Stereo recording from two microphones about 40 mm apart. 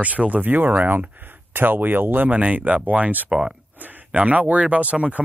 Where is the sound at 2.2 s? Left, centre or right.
Right.